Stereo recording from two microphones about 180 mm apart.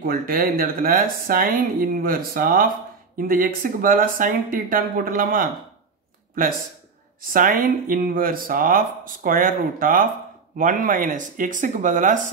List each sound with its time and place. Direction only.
0.0 s speech: 55° right (ahead or behind)
7.3 s speech: 50° right (ahead or behind)